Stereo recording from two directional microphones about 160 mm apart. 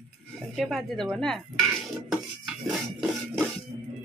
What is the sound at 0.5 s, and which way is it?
Speech, centre (ahead or behind).